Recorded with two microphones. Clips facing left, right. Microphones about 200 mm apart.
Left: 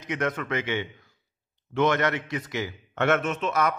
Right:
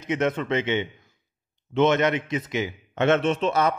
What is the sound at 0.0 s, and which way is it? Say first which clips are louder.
A man's voice: right 4 dB; 25° right (ahead or behind).